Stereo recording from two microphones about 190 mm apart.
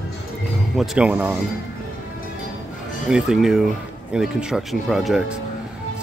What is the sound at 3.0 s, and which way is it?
Speech, 5° right (ahead or behind).